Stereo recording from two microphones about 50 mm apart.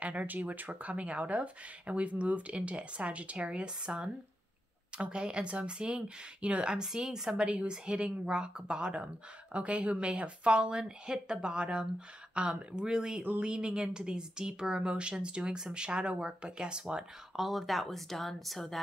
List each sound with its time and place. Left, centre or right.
0.0 s speech: right
17.4 s speech: centre